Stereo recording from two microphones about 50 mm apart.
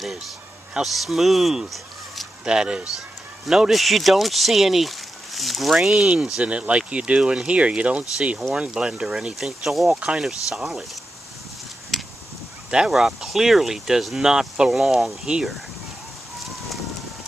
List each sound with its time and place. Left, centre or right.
0.8 s speech: centre
2.4 s speech: centre
3.7 s speech: centre
6.0 s speech: right
11.9 s a sound: centre
12.9 s speech: centre